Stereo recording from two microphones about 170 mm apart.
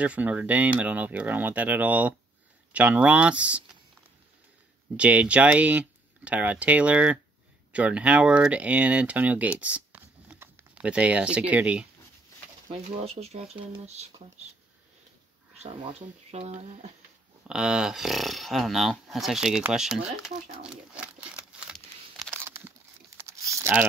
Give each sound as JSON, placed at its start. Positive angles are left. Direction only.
{"t": 0.0, "sound": "speech", "side_deg": -10}
{"t": 4.9, "sound": "speech", "side_deg": -5}
{"t": 12.7, "sound": "speech", "side_deg": -35}
{"t": 15.6, "sound": "speech", "side_deg": -35}
{"t": 17.5, "sound": "speech", "side_deg": -5}
{"t": 20.6, "sound": "crumpling", "side_deg": -5}
{"t": 22.4, "sound": "tearing", "side_deg": -10}